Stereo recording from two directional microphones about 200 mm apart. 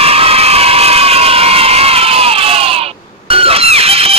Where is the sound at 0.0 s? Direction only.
30° right (ahead or behind).